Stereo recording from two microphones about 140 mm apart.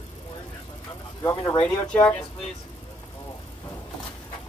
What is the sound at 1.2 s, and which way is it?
Speech, 25° left (ahead or behind).